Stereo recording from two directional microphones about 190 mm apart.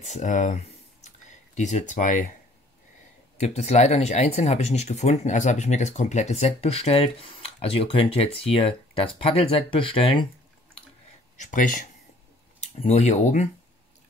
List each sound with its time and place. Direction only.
0.0 s a sound: 40° left (ahead or behind)
3.3 s speech: 35° left (ahead or behind)
11.3 s speech: 40° left (ahead or behind)